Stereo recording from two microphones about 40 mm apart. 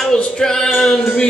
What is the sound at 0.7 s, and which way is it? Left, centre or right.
Music, centre.